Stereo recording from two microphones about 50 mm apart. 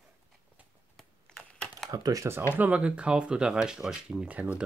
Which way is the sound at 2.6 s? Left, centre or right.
Right.